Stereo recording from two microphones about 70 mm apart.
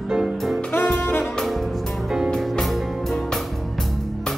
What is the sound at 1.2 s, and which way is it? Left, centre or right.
Music, centre.